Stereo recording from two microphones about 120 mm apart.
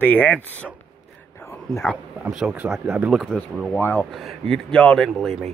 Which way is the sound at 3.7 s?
15° left (ahead or behind).